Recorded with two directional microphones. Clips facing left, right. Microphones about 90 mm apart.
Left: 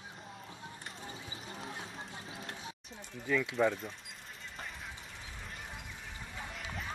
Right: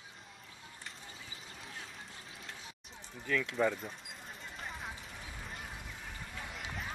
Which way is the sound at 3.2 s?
10° left (ahead or behind).